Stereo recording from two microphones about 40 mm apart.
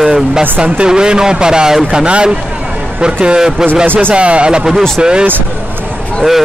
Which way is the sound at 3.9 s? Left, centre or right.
Right.